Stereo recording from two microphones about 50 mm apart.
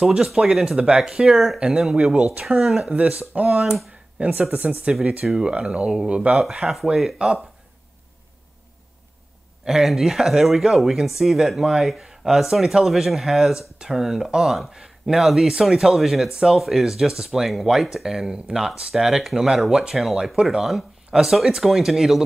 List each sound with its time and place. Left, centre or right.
0.0 s speech: centre
3.0 s speech: right
4.3 s speech: right
5.2 s speech: centre
5.5 s speech: right
6.4 s speech: centre
7.2 s speech: centre
9.7 s speech: centre